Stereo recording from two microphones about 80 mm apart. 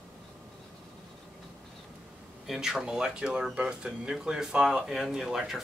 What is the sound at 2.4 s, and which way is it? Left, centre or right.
Speech, centre.